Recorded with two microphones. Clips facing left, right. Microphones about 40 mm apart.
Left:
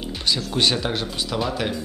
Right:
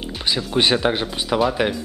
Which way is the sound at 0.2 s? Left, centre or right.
Centre.